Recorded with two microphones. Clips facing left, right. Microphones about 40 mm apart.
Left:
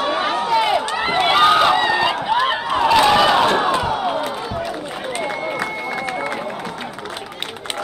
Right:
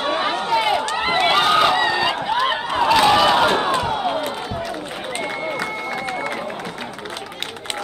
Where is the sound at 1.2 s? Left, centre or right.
Centre.